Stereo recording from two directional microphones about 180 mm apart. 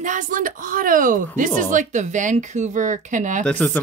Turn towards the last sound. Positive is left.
turn(degrees=10)  # may be behind; listen again after turning